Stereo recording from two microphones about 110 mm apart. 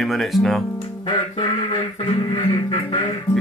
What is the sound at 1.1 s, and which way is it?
Speech, 40° left (ahead or behind).